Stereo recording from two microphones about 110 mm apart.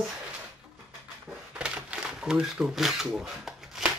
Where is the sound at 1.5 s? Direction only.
10° right (ahead or behind).